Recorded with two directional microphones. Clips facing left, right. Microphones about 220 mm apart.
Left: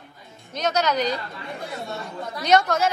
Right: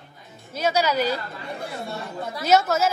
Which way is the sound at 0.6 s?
10° right (ahead or behind).